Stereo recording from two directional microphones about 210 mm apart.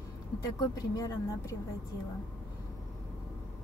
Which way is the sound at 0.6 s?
15° left (ahead or behind).